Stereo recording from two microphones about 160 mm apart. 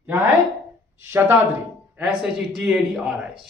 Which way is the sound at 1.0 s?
15° right (ahead or behind).